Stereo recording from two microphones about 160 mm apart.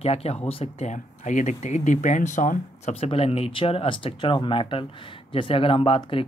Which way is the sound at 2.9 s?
35° left (ahead or behind).